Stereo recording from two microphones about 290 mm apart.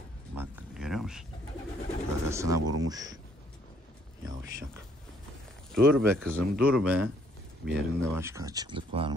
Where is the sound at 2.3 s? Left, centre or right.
Centre.